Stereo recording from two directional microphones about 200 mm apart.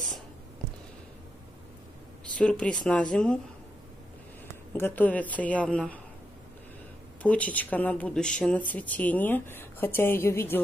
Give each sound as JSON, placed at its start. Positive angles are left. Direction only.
{"t": 2.3, "sound": "speech", "side_deg": 5}
{"t": 4.7, "sound": "speech", "side_deg": 10}
{"t": 7.2, "sound": "speech", "side_deg": 5}